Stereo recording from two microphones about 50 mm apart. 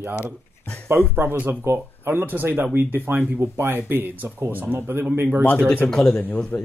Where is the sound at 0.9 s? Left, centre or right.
Right.